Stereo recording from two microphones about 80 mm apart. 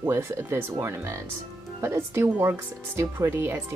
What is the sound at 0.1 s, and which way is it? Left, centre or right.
Speech, right.